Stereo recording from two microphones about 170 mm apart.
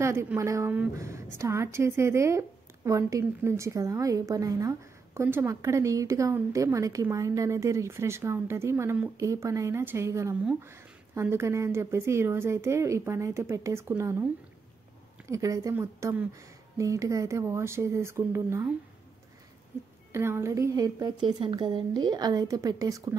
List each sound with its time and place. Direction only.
0.0 s a woman's voice: 15° right (ahead or behind)
15.2 s a woman's voice: 20° right (ahead or behind)
20.1 s a woman's voice: 15° right (ahead or behind)